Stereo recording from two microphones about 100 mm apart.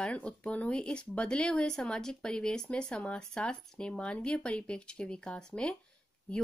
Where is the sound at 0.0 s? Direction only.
10° left (ahead or behind).